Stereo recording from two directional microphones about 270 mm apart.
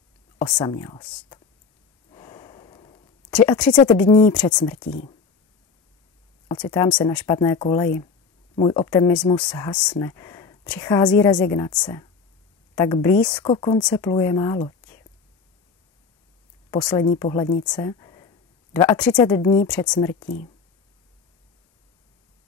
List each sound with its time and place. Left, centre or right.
0.4 s speech: centre
2.0 s snort: centre
3.3 s speech: centre
6.6 s speech: centre
16.7 s speech: centre
17.6 s a sound: centre
19.1 s speech: centre